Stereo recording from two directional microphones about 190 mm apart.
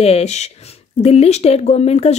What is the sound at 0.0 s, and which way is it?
Speech, 35° left (ahead or behind).